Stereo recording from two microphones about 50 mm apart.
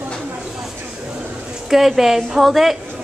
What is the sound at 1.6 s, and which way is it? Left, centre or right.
A woman's voice, centre.